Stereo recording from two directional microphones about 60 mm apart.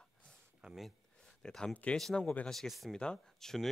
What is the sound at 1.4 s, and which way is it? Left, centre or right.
Speech, centre.